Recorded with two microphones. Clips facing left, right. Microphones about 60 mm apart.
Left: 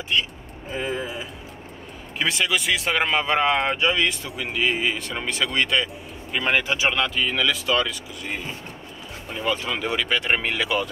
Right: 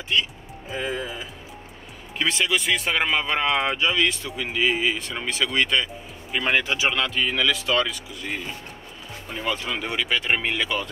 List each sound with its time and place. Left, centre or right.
0.7 s speech: centre
2.1 s speech: centre
3.7 s speech: centre
4.4 s speech: centre